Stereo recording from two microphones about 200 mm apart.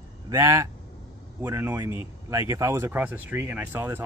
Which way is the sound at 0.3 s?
15° right (ahead or behind).